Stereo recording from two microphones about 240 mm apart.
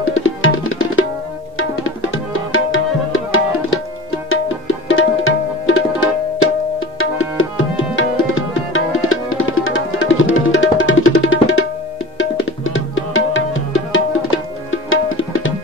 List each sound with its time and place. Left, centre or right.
0.0 s tabla: left
2.5 s tabla: left
12.6 s music: left
13.9 s tabla: left